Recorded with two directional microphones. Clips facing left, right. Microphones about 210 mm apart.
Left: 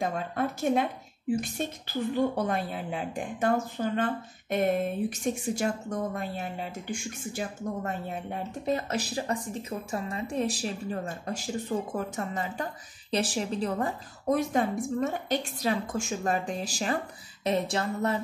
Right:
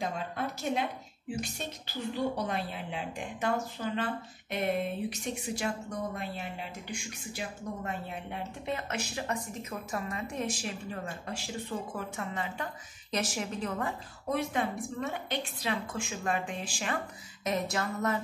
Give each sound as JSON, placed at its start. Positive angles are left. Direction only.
{"t": 0.6, "sound": "a woman's voice", "side_deg": 50}